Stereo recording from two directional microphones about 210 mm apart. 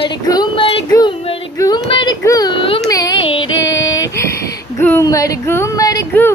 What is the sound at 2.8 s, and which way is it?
Speech, 15° left (ahead or behind).